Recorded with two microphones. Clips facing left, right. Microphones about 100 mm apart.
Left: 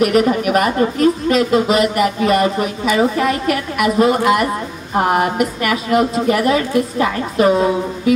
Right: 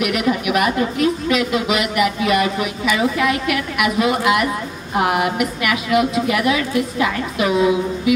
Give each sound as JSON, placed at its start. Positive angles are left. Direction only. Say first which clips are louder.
{"t": 0.0, "sound": "speech", "louder": "left 5 dB", "side_deg": 40}